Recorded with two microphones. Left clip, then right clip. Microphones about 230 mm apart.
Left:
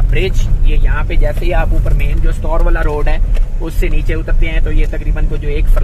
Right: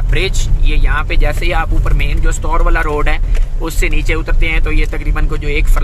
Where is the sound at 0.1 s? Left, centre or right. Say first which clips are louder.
Right 1 dB; right.